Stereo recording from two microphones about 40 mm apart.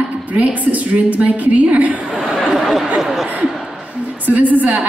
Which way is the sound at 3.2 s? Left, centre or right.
Right.